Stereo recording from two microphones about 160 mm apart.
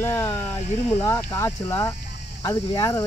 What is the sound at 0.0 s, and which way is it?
Speech, 15° left (ahead or behind).